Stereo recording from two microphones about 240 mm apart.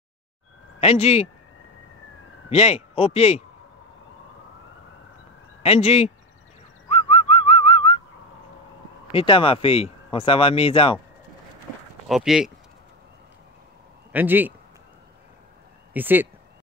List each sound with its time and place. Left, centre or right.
0.7 s speech: left
2.5 s speech: left
5.6 s speech: left
6.9 s whistling: left
9.1 s speech: left
12.1 s speech: centre
14.1 s speech: centre
15.9 s speech: centre